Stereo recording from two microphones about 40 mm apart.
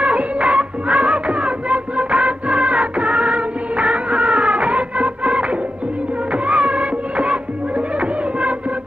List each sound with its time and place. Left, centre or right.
0.0 s music: right